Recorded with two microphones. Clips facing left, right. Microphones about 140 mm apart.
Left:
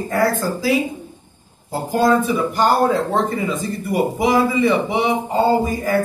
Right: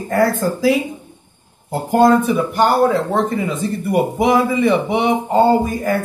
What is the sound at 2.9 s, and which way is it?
Speech, 20° right (ahead or behind).